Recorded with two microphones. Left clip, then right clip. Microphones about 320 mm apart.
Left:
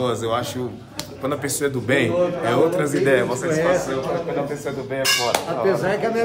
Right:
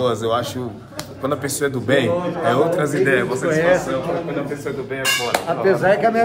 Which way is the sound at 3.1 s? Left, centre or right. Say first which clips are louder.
Even; left.